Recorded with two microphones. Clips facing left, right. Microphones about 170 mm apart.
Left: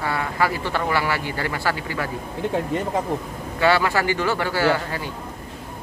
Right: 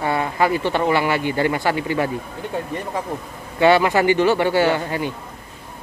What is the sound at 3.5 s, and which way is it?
Speech, 20° right (ahead or behind).